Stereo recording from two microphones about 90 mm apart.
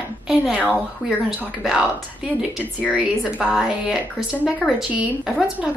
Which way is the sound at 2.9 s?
10° right (ahead or behind).